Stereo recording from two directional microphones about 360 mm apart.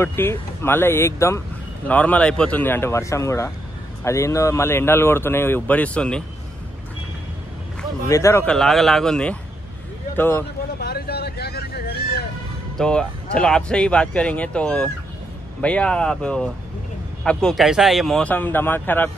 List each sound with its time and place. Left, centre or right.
0.0 s speech: centre
8.1 s speech: centre
10.8 s vehicle: left
12.7 s speech: centre